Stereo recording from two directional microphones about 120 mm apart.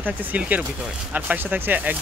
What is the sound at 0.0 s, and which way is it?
Speech, 15° right (ahead or behind).